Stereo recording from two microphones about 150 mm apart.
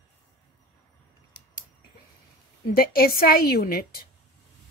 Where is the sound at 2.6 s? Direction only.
85° left.